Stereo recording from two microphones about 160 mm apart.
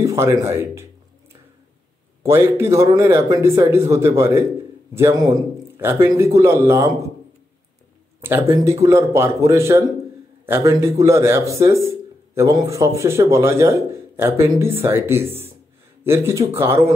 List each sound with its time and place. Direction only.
0.0 s speech: 20° right (ahead or behind)
2.2 s a man's voice: 15° right (ahead or behind)
8.2 s speech: 15° right (ahead or behind)